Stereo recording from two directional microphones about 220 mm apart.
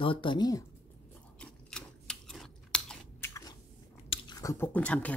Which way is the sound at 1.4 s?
5° left (ahead or behind).